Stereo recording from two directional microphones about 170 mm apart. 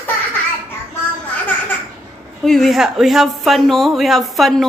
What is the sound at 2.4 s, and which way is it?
A man's voice, centre (ahead or behind).